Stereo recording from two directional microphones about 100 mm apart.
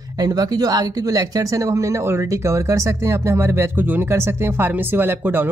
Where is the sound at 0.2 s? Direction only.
40° right (ahead or behind).